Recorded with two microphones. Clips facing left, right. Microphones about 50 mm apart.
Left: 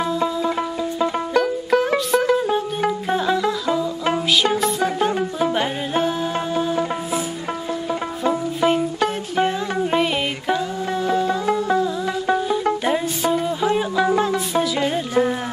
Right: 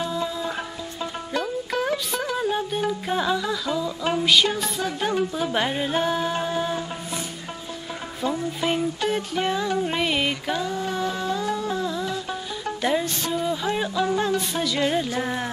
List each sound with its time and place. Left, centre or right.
0.9 s music: left
3.1 s music: centre
5.5 s music: centre
8.2 s music: centre
12.8 s music: centre